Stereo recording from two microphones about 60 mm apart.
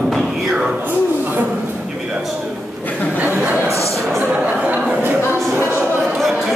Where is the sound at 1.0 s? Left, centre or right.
Right.